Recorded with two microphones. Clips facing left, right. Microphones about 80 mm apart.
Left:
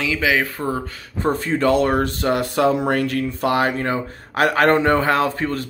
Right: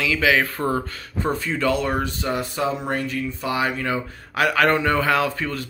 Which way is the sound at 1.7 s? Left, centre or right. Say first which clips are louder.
Left 5 dB; left.